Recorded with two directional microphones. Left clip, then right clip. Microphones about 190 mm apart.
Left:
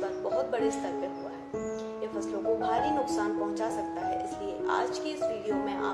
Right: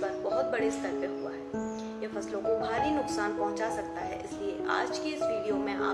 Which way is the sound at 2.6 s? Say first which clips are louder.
Left 2 dB; centre (ahead or behind).